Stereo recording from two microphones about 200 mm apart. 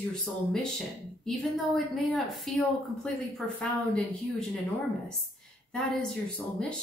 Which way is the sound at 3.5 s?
5° left (ahead or behind).